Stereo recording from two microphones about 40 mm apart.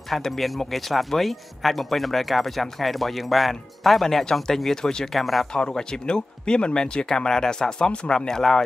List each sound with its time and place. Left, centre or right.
0.1 s speech: centre
5.5 s speech: centre
8.1 s speech: centre